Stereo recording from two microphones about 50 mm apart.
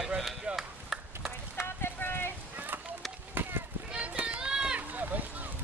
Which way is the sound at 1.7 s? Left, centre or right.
Left.